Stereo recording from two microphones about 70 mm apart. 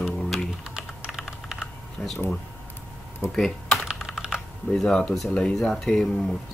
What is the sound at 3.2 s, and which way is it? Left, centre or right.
Speech, centre.